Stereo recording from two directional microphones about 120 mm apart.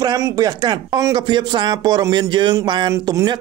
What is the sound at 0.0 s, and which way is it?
Speech, 35° right (ahead or behind).